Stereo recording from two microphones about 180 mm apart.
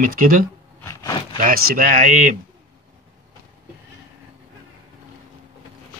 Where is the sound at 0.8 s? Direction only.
20° left (ahead or behind).